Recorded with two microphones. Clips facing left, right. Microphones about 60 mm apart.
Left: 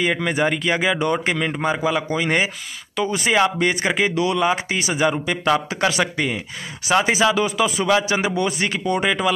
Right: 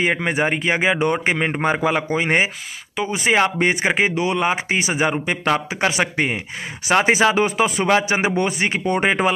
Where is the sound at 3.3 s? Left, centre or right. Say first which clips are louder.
Right 1 dB; right.